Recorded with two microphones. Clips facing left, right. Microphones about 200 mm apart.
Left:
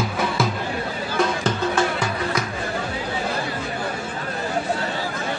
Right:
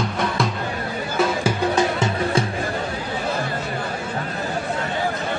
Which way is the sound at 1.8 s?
25° right (ahead or behind).